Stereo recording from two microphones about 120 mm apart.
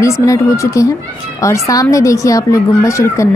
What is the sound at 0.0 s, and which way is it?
Speech, 25° left (ahead or behind).